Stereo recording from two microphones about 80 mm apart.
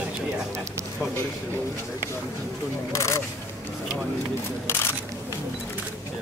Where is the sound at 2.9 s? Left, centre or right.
Left.